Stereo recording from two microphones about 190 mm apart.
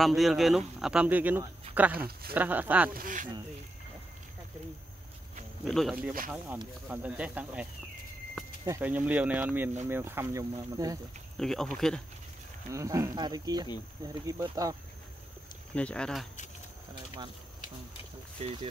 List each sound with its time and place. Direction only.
0.0 s speech: centre (ahead or behind)
2.9 s speech: 45° right (ahead or behind)
5.7 s speech: centre (ahead or behind)
6.3 s speech: 10° right (ahead or behind)
8.6 s speech: 10° right (ahead or behind)
11.3 s speech: centre (ahead or behind)
12.7 s speech: 15° right (ahead or behind)
15.7 s speech: 5° left (ahead or behind)